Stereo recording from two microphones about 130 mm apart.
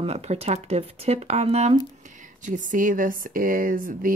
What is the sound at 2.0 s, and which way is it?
Speech, 75° right (ahead or behind).